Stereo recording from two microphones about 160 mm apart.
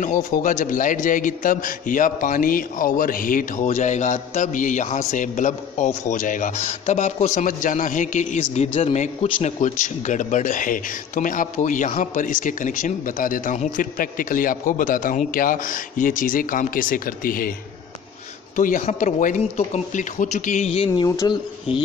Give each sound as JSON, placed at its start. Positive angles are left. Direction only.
{"t": 0.0, "sound": "a man's voice", "side_deg": 55}
{"t": 18.6, "sound": "speech", "side_deg": 55}
{"t": 21.0, "sound": "speech", "side_deg": 25}